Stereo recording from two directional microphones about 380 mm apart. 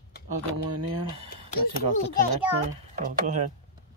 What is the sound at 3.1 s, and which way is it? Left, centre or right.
Speech, centre.